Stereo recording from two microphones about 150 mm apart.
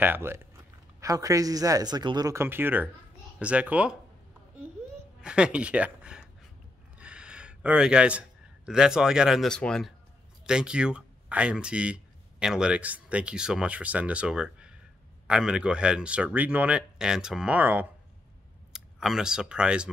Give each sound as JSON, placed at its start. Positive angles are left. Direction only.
{"t": 0.0, "sound": "speech", "side_deg": -15}
{"t": 5.2, "sound": "speech", "side_deg": -5}
{"t": 7.0, "sound": "a sound", "side_deg": -5}
{"t": 8.6, "sound": "speech", "side_deg": -5}